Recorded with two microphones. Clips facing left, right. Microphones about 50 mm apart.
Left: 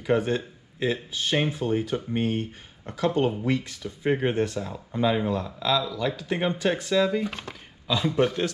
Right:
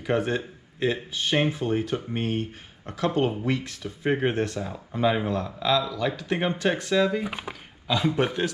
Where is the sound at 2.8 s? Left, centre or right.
Centre.